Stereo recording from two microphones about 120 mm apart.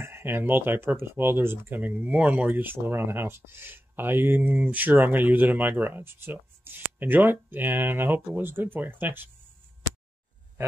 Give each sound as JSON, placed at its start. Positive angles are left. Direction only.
{"t": 0.0, "sound": "speech", "side_deg": -20}